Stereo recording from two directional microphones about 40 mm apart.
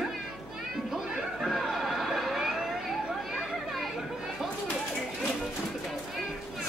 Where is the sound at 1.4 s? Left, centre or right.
Centre.